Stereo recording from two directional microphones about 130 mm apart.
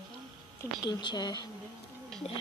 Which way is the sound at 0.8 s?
35° left (ahead or behind).